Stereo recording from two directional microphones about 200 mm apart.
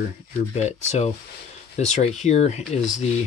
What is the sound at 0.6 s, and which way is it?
Speech, 35° left (ahead or behind).